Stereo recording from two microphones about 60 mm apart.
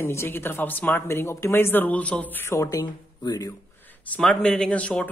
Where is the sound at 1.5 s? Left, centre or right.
Left.